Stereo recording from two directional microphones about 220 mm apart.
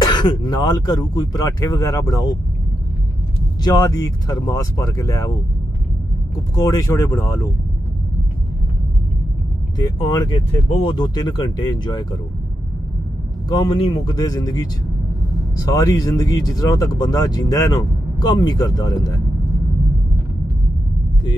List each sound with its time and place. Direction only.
0.0 s speech: 20° left (ahead or behind)
3.6 s speech: 15° left (ahead or behind)
6.3 s speech: 15° left (ahead or behind)
9.8 s speech: 20° left (ahead or behind)
13.5 s speech: 20° left (ahead or behind)